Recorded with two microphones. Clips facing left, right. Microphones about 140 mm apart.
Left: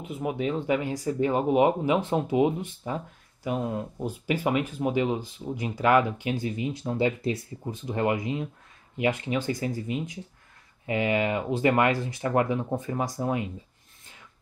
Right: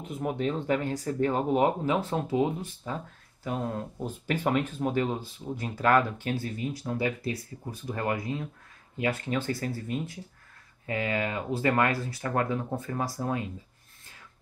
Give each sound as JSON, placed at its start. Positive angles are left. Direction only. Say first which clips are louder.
{"t": 0.0, "sound": "speech", "louder": "left 1 dB", "side_deg": 5}